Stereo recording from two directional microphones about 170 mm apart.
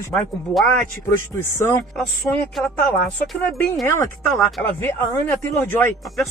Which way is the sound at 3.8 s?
15° left (ahead or behind).